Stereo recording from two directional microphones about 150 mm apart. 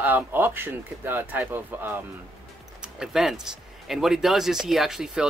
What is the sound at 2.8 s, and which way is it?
Speech, 5° right (ahead or behind).